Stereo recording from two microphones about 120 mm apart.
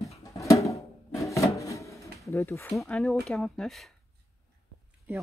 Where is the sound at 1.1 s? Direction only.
25° left (ahead or behind).